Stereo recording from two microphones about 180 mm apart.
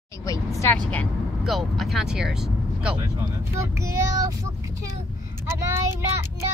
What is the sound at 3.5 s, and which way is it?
Speech, 15° right (ahead or behind).